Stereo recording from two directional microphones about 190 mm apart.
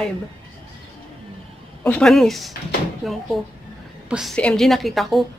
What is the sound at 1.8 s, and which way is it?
A woman's voice, 5° left (ahead or behind).